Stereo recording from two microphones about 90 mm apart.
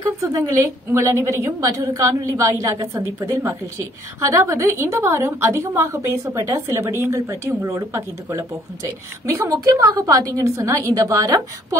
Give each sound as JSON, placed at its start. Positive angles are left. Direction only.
{"t": 0.3, "sound": "a woman's voice", "side_deg": -40}